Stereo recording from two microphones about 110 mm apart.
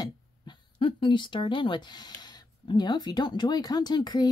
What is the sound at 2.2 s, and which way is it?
A woman's voice, 40° left (ahead or behind).